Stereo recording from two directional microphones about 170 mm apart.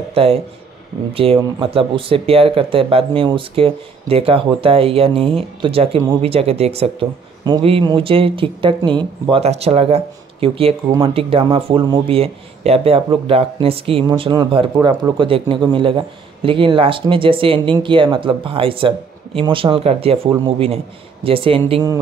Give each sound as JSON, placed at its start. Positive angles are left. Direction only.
{"t": 0.1, "sound": "speech", "side_deg": -35}